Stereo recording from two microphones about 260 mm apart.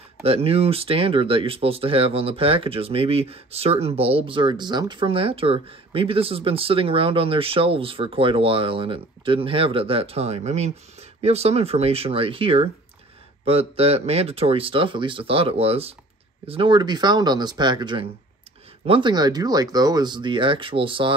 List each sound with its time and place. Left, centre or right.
0.2 s speech: right